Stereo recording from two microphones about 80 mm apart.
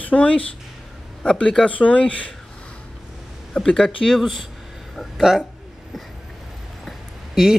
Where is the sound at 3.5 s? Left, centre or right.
Centre.